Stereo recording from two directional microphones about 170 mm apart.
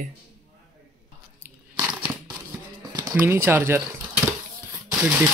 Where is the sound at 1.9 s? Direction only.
10° right (ahead or behind).